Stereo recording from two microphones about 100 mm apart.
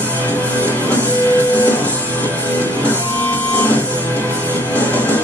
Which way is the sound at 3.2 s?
20° left (ahead or behind).